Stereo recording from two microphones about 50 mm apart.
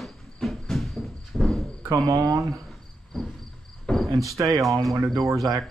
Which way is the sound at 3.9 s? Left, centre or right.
Left.